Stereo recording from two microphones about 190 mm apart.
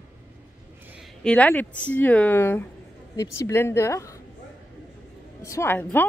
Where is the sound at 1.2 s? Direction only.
5° left (ahead or behind).